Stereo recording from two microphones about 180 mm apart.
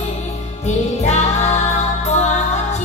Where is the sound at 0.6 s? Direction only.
40° left (ahead or behind).